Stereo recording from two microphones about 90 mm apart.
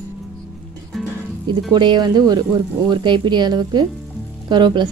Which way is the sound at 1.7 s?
55° right (ahead or behind).